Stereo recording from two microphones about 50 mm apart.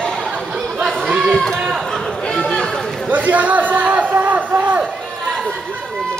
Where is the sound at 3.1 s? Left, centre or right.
Right.